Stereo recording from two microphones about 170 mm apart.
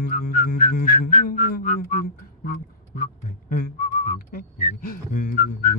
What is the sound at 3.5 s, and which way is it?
Whistling, 55° left (ahead or behind).